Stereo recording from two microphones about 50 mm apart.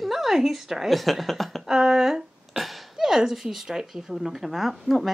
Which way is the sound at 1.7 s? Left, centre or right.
Centre.